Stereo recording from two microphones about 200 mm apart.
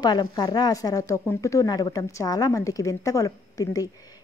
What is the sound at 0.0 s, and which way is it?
A woman's voice, 20° left (ahead or behind).